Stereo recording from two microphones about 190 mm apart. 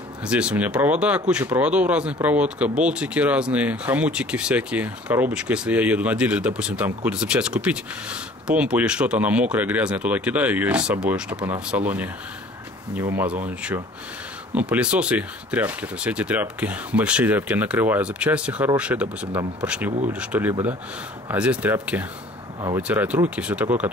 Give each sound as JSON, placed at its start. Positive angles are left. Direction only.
{"t": 0.3, "sound": "speech", "side_deg": -5}
{"t": 14.5, "sound": "speech", "side_deg": -5}
{"t": 21.9, "sound": "speech", "side_deg": -20}
{"t": 22.8, "sound": "speech", "side_deg": -5}